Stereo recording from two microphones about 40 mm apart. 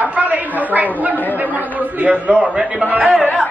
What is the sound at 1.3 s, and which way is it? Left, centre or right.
Chatter, right.